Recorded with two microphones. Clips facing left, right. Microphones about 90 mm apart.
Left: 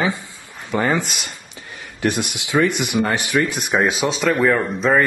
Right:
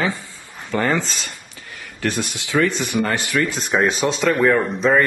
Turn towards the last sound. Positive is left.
turn(degrees=0)  # may be behind; listen again after turning